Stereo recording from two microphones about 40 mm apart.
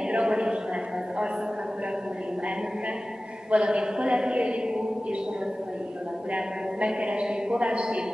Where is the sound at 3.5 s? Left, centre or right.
Right.